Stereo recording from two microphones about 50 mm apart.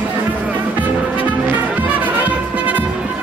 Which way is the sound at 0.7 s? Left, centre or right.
Right.